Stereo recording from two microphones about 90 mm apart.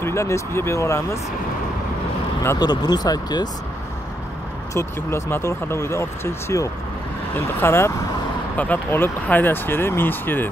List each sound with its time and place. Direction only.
0.0 s speech: 30° left (ahead or behind)
2.6 s speech: 50° left (ahead or behind)
4.7 s speech: 30° left (ahead or behind)